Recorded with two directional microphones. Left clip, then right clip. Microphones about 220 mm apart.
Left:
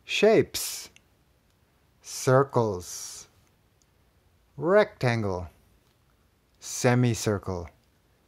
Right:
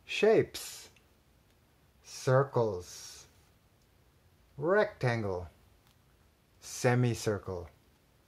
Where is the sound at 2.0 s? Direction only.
40° left (ahead or behind).